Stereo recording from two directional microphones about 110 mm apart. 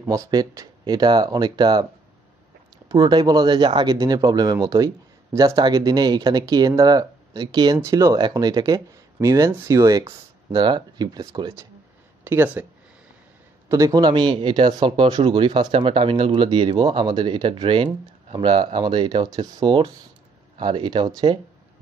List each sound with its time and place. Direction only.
0.1 s speech: 35° right (ahead or behind)
2.9 s speech: 40° right (ahead or behind)
12.3 s speech: 20° right (ahead or behind)
13.7 s speech: 30° right (ahead or behind)